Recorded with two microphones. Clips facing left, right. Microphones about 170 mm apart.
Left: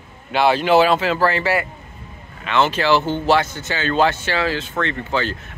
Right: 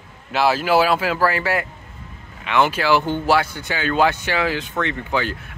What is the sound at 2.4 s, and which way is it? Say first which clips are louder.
Speech: left 1 dB; 10° right (ahead or behind).